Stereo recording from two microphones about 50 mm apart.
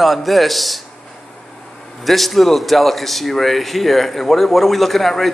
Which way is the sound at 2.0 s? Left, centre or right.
Centre.